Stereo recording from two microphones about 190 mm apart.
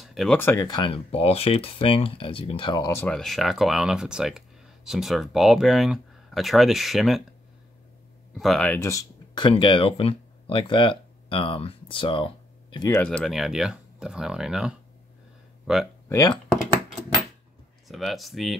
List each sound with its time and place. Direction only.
0.0 s a sound: centre (ahead or behind)
0.4 s speech: 15° left (ahead or behind)
8.4 s speech: centre (ahead or behind); by 13.0 s 20° left (ahead or behind)
13.0 s speech: centre (ahead or behind)
16.1 s speech: 15° left (ahead or behind)
16.5 s a sound: centre (ahead or behind)
17.8 s speech: centre (ahead or behind)